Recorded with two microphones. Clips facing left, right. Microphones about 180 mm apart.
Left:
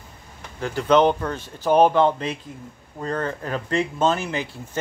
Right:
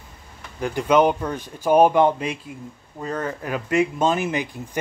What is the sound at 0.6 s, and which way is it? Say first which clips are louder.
Speech: even; 15° right (ahead or behind).